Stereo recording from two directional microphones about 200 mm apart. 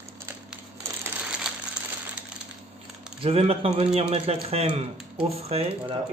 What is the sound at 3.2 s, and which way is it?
Speech, 30° right (ahead or behind).